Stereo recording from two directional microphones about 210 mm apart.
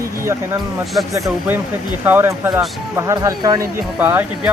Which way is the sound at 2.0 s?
10° right (ahead or behind).